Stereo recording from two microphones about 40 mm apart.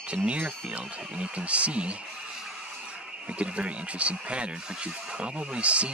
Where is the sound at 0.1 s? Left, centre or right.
Right.